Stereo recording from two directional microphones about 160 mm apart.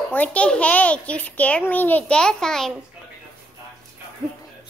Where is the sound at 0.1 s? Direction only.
10° left (ahead or behind).